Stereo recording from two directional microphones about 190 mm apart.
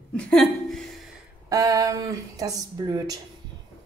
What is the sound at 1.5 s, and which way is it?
Speech, 20° right (ahead or behind).